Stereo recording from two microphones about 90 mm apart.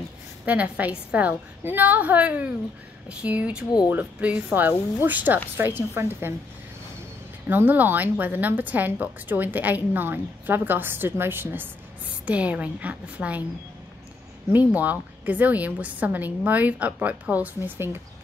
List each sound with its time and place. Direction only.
0.5 s a woman's voice: 15° right (ahead or behind)
7.4 s a woman's voice: 20° right (ahead or behind)
14.5 s a woman's voice: 15° right (ahead or behind)